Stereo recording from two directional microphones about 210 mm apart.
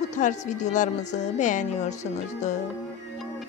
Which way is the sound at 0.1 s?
35° left (ahead or behind).